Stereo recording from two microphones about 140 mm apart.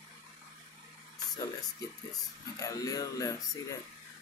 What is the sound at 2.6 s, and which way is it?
Speech, 25° left (ahead or behind).